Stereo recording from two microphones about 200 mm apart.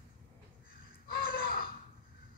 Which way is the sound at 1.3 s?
45° left (ahead or behind).